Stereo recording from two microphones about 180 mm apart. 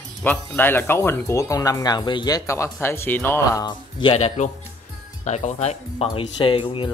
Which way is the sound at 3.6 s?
30° left (ahead or behind).